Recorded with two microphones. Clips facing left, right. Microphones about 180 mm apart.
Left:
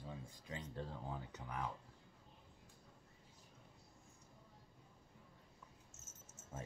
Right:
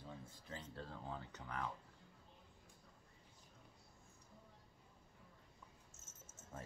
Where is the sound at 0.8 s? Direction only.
15° left (ahead or behind).